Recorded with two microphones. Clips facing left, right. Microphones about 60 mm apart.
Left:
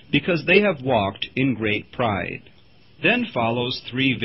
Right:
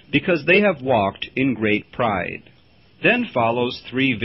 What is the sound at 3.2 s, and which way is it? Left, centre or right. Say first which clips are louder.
Speech: right 3 dB; centre.